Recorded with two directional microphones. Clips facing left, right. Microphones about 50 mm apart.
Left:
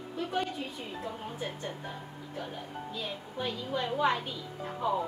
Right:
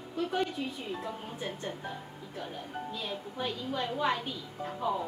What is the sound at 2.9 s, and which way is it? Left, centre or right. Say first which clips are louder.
A woman's voice: left 2 dB; centre.